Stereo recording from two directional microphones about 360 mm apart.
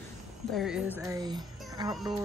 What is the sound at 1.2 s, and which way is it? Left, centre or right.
Music, centre.